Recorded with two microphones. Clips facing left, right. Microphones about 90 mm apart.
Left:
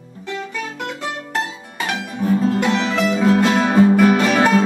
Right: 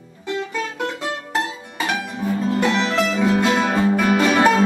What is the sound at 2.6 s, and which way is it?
Music, 5° left (ahead or behind).